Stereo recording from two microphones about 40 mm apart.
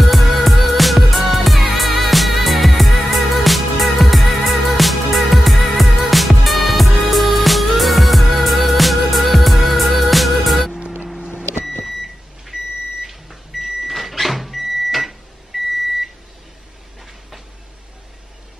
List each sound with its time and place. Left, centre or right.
0.0 s music: centre
11.1 s vehicle: centre
11.8 s microwave oven: centre